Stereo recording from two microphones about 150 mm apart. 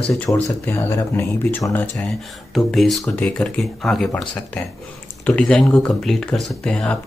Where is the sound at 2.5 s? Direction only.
Centre (ahead or behind).